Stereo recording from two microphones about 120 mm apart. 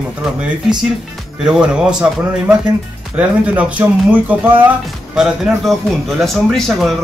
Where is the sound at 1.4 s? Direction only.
5° right (ahead or behind).